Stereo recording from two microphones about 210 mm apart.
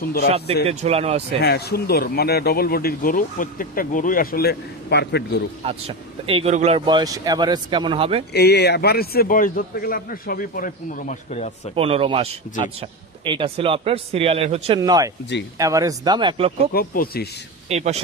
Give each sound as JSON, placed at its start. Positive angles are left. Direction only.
{"t": 0.7, "sound": "speech", "side_deg": -30}
{"t": 1.4, "sound": "speech", "side_deg": 50}
{"t": 5.6, "sound": "speech", "side_deg": -25}
{"t": 8.3, "sound": "speech", "side_deg": 50}
{"t": 11.7, "sound": "speech", "side_deg": -25}
{"t": 14.8, "sound": "speech", "side_deg": -15}
{"t": 16.7, "sound": "speech", "side_deg": 45}
{"t": 17.6, "sound": "a man's voice", "side_deg": -30}